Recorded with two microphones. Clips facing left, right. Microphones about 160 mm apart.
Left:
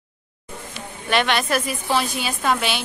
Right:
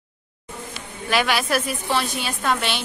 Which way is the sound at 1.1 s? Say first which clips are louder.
Left 1 dB; 5° right (ahead or behind).